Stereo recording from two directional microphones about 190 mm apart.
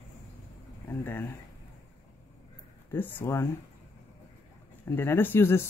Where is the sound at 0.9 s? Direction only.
10° left (ahead or behind).